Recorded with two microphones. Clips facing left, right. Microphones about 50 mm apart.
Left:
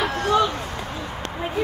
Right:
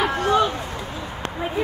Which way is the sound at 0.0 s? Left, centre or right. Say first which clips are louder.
Right 1 dB; right.